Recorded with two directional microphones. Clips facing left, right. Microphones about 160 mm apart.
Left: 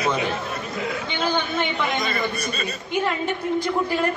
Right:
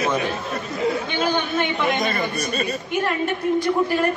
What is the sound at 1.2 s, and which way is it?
Chatter, 10° right (ahead or behind).